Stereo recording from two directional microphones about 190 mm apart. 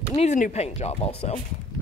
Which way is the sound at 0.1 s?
35° left (ahead or behind).